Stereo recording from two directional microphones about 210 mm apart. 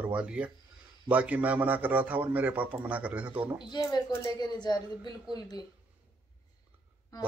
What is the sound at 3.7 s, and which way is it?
A woman's voice, 20° left (ahead or behind).